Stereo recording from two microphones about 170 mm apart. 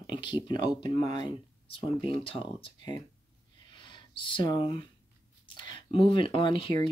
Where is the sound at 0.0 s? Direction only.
25° left (ahead or behind).